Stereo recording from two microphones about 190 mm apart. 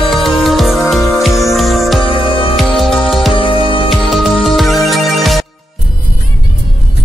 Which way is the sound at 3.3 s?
30° left (ahead or behind).